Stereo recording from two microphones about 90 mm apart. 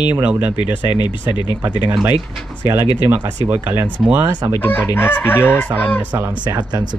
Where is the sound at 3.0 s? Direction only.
20° right (ahead or behind).